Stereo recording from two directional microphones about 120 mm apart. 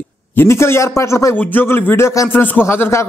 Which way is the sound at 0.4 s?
20° left (ahead or behind).